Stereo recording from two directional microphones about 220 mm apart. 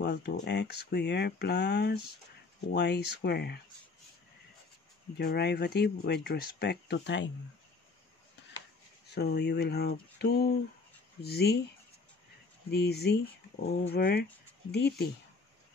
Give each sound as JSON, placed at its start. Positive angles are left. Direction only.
{"t": 0.0, "sound": "speech", "side_deg": 50}
{"t": 5.1, "sound": "speech", "side_deg": 50}
{"t": 9.0, "sound": "speech", "side_deg": 50}
{"t": 12.7, "sound": "speech", "side_deg": 50}